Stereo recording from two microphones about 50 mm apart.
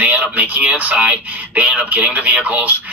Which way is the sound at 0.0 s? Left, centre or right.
Right.